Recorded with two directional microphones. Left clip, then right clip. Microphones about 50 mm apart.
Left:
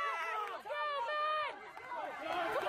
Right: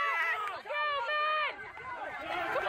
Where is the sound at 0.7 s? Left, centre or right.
Right.